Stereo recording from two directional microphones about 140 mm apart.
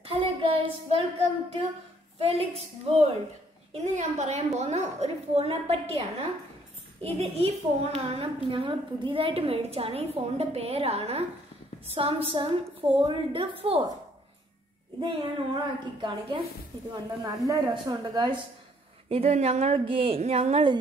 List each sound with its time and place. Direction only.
0.0 s child singing: 40° right (ahead or behind)
2.1 s a woman's voice: 45° right (ahead or behind)
15.0 s a woman's voice: 30° right (ahead or behind)
19.0 s a woman's voice: 45° right (ahead or behind)